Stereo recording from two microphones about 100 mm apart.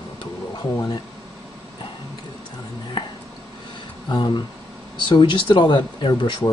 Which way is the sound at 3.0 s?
55° left (ahead or behind).